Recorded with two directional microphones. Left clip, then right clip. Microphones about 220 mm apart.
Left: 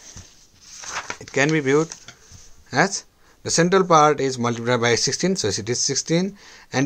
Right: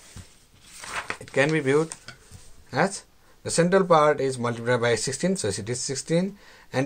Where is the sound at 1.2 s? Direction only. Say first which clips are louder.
Left 3 dB; 25° left (ahead or behind).